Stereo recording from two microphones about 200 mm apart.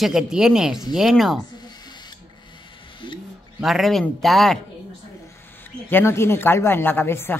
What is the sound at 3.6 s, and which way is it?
A woman's voice, centre (ahead or behind).